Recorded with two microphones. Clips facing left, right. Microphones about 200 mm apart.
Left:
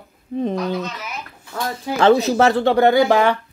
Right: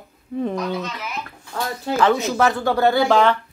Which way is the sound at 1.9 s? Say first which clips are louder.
Left 4 dB; 35° left (ahead or behind).